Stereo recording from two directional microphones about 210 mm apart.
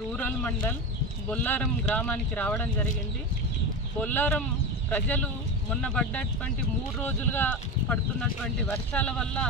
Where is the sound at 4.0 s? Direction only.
10° left (ahead or behind).